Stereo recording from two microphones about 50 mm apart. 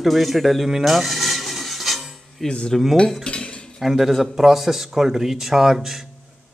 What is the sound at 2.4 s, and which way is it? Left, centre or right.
Cutlery, centre.